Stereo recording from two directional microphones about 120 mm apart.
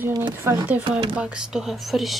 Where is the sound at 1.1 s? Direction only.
10° right (ahead or behind).